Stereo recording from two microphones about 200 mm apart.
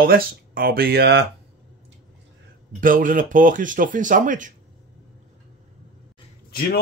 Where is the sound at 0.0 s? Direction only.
45° right (ahead or behind).